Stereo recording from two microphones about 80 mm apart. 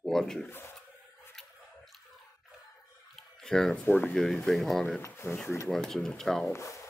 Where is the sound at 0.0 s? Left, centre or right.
Centre.